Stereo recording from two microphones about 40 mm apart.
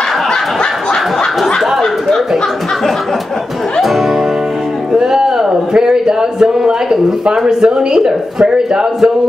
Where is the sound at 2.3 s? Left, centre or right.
Centre.